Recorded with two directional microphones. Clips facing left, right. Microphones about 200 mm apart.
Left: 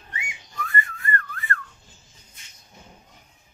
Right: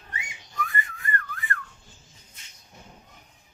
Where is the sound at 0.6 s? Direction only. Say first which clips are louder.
Left 2 dB; 15° right (ahead or behind).